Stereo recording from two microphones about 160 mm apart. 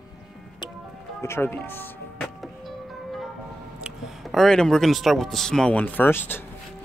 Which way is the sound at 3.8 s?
Centre (ahead or behind).